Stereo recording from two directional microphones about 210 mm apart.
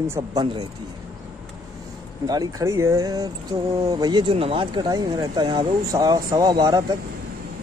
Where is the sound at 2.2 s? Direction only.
20° right (ahead or behind).